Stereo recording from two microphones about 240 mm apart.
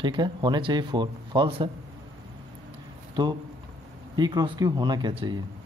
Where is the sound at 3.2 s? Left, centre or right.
Centre.